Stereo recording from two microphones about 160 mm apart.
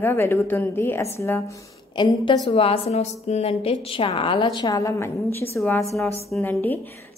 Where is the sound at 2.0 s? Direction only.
30° left (ahead or behind).